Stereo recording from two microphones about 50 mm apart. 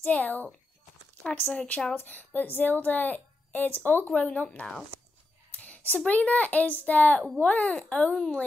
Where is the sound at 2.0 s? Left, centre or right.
Left.